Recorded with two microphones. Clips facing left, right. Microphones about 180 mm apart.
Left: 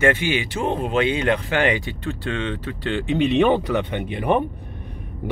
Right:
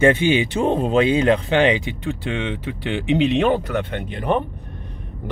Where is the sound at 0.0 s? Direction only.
20° right (ahead or behind).